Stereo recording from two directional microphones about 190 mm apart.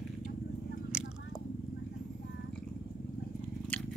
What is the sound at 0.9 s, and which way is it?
Biting, 5° right (ahead or behind).